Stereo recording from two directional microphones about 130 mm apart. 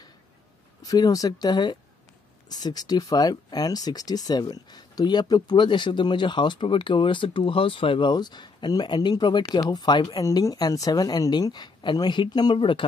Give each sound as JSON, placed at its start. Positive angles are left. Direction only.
{"t": 0.8, "sound": "speech", "side_deg": 30}